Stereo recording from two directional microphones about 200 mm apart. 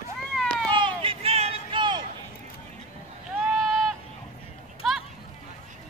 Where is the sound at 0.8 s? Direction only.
25° right (ahead or behind).